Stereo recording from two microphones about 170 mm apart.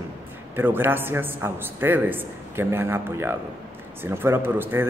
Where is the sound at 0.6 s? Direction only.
10° right (ahead or behind).